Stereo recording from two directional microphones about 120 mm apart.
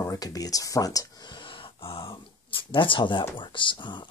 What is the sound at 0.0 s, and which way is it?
Speech, 30° left (ahead or behind).